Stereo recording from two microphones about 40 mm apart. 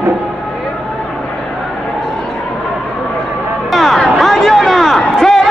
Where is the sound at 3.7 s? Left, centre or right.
Centre.